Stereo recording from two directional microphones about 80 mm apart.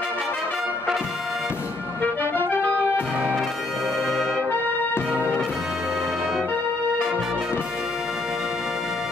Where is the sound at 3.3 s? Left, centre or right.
Centre.